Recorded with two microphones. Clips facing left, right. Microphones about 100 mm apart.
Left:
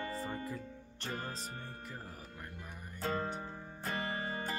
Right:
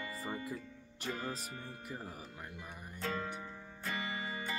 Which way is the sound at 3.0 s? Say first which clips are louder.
Left 3 dB; 40° left (ahead or behind).